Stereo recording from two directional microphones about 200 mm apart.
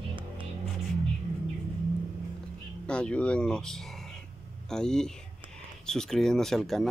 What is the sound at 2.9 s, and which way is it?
Speech, 5° left (ahead or behind).